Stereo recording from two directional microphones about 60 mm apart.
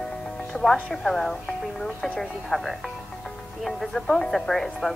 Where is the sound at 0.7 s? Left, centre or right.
Centre.